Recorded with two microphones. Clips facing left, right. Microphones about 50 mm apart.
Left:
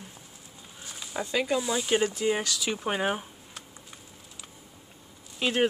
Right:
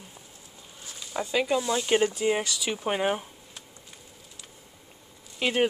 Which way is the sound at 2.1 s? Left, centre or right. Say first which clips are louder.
Right 1 dB; centre.